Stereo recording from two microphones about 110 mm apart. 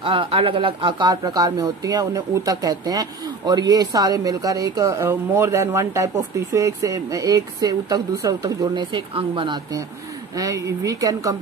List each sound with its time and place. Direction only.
0.0 s speech: 50° right (ahead or behind)
10.3 s speech: 30° right (ahead or behind)